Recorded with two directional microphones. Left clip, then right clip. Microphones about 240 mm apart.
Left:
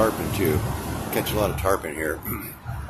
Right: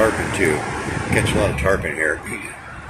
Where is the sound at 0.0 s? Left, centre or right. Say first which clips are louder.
Right 5 dB; centre.